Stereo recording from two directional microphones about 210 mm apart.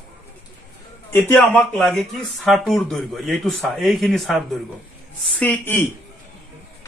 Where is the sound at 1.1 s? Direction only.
5° left (ahead or behind).